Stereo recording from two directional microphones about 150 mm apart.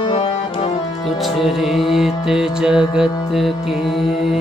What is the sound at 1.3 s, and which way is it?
Music, centre (ahead or behind).